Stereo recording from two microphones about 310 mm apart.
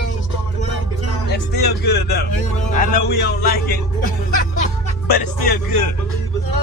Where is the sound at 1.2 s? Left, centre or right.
Left.